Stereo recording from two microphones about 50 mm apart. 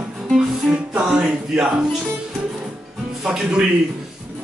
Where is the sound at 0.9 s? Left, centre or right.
Right.